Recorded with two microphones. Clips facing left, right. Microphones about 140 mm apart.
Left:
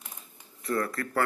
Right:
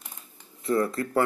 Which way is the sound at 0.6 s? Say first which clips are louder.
Right 5 dB; 20° right (ahead or behind).